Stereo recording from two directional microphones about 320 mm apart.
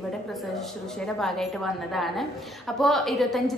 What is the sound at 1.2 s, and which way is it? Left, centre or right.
A woman's voice, centre.